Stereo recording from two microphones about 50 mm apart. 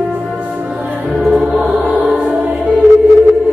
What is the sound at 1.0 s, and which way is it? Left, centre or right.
Music, centre.